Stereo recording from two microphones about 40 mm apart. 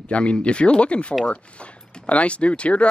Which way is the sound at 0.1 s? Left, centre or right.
Left.